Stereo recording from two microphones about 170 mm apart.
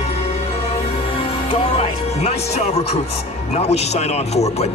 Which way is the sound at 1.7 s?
35° left (ahead or behind).